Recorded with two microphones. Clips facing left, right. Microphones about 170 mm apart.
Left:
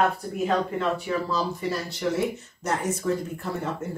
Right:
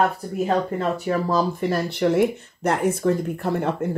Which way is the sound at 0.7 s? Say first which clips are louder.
Right 3 dB; 45° right (ahead or behind).